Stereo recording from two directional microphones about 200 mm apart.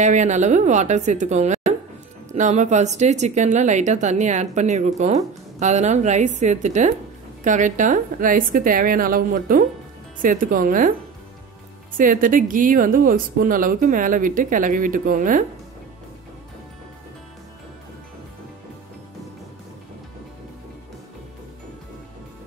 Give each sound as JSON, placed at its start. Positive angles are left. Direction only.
{"t": 0.0, "sound": "a woman's voice", "side_deg": -35}
{"t": 12.0, "sound": "speech", "side_deg": -40}